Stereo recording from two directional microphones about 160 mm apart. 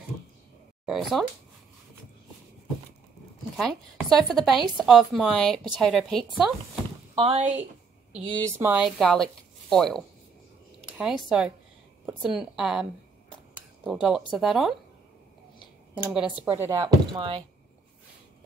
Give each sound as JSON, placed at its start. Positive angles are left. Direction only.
{"t": 0.8, "sound": "speech", "side_deg": 0}
{"t": 3.5, "sound": "speech", "side_deg": 5}
{"t": 7.2, "sound": "speech", "side_deg": -40}
{"t": 8.5, "sound": "speech", "side_deg": -15}
{"t": 8.7, "sound": "speech", "side_deg": 0}
{"t": 13.8, "sound": "speech", "side_deg": -5}
{"t": 16.0, "sound": "speech", "side_deg": -10}
{"t": 17.1, "sound": "speech", "side_deg": -35}